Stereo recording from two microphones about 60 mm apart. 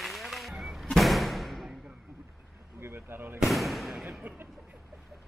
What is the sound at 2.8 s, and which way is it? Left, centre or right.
Speech, right.